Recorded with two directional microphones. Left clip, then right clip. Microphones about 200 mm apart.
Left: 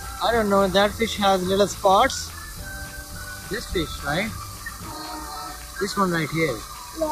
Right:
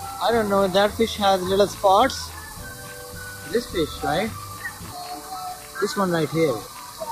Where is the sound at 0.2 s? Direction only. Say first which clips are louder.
Even; 5° right (ahead or behind).